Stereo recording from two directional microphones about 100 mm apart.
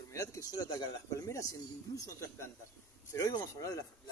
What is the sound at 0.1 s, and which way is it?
Speech, 30° left (ahead or behind).